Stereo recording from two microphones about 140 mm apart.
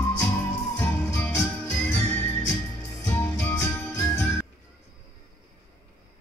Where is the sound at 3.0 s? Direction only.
15° left (ahead or behind).